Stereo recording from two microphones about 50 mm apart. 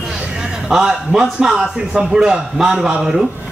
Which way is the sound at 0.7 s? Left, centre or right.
Centre.